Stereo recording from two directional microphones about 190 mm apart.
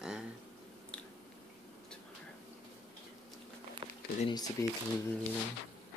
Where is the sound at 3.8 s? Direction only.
25° right (ahead or behind).